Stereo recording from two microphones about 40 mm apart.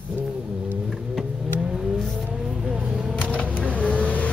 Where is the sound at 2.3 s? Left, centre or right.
Centre.